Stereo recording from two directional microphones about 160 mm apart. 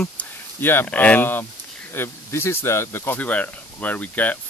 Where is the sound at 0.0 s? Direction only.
10° left (ahead or behind).